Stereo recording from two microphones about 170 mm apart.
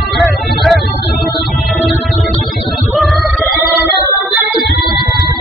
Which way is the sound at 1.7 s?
Centre (ahead or behind).